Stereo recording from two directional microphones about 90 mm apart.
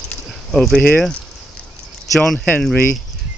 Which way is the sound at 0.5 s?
5° left (ahead or behind).